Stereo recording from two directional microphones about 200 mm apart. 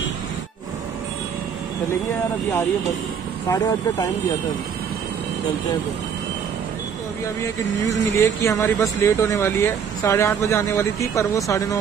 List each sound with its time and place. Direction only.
3.4 s speech: 15° left (ahead or behind)
7.4 s speech: 15° left (ahead or behind)